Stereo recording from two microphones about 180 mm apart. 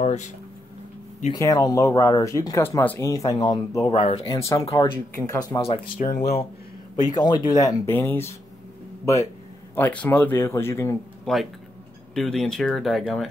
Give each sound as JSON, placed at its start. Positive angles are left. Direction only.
{"t": 0.0, "sound": "a sound", "side_deg": 40}
{"t": 1.3, "sound": "speech", "side_deg": 20}
{"t": 3.9, "sound": "speech", "side_deg": 35}
{"t": 4.5, "sound": "speech", "side_deg": 20}
{"t": 6.0, "sound": "speech", "side_deg": 45}
{"t": 7.2, "sound": "speech", "side_deg": 25}
{"t": 11.3, "sound": "speech", "side_deg": 5}